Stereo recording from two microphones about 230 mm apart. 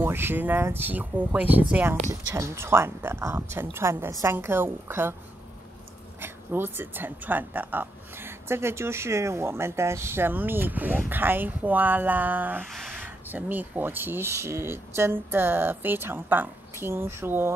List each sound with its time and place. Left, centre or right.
0.0 s speech: centre
6.2 s speech: centre